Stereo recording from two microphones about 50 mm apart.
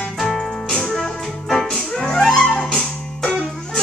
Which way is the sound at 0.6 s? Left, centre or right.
Centre.